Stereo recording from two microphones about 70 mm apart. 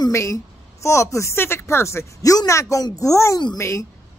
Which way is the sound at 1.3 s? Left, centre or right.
Left.